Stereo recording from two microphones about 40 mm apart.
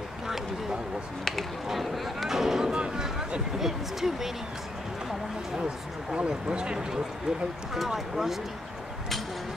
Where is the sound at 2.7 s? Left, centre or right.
Right.